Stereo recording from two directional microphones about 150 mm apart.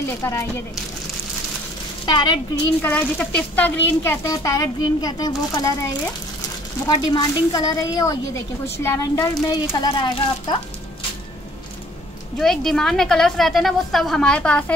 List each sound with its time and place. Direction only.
0.2 s speech: 15° left (ahead or behind)
2.0 s a woman's voice: 30° left (ahead or behind)
2.8 s a woman's voice: 10° left (ahead or behind)
6.9 s a woman's voice: 25° left (ahead or behind)
12.4 s a woman's voice: 5° left (ahead or behind)